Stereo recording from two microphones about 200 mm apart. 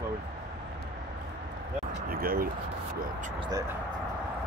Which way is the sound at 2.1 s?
50° right (ahead or behind).